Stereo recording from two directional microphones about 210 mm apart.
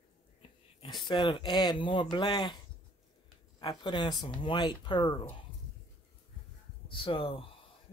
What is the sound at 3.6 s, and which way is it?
Speech, 20° left (ahead or behind).